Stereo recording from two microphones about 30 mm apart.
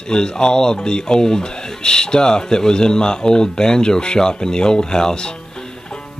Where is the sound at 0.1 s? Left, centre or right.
Left.